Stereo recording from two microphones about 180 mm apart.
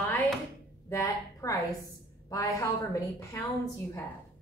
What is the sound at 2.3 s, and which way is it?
Speech, 20° left (ahead or behind).